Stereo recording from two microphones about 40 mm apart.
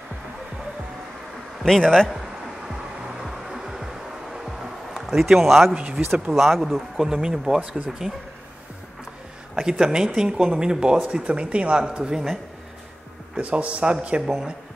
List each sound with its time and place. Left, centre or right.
1.8 s speech: centre
2.7 s music: centre
5.2 s speech: centre
5.8 s speech: right
6.3 s speech: centre
7.1 s speech: centre
9.6 s a man's voice: centre
13.4 s a man's voice: right